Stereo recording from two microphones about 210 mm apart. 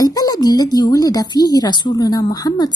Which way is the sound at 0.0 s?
15° left (ahead or behind).